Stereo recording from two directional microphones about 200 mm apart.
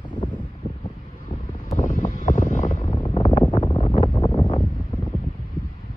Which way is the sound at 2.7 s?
20° left (ahead or behind).